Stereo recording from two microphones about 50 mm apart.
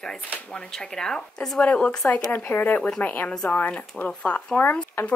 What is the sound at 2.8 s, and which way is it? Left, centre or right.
Speech, left.